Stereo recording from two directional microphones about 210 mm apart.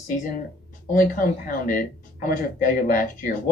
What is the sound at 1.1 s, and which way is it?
Speech, 40° left (ahead or behind).